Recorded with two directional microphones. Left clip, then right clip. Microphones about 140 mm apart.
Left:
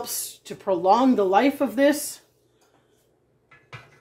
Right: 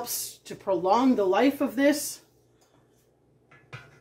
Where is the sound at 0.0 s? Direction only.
50° left (ahead or behind).